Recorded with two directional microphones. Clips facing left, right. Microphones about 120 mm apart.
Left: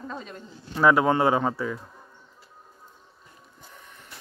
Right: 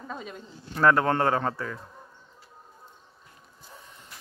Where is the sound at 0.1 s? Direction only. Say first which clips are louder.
Left 1 dB; 5° right (ahead or behind).